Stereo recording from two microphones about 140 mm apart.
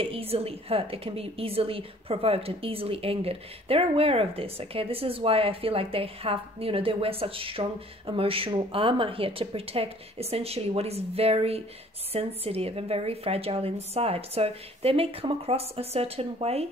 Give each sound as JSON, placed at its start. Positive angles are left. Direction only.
{"t": 0.0, "sound": "a woman's voice", "side_deg": -45}